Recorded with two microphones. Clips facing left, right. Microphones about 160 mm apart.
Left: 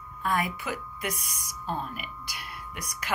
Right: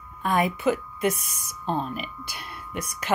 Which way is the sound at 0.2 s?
20° right (ahead or behind).